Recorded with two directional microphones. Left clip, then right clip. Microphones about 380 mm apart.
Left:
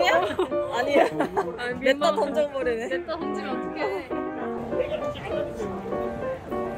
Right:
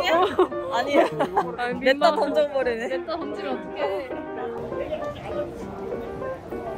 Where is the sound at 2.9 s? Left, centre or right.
Right.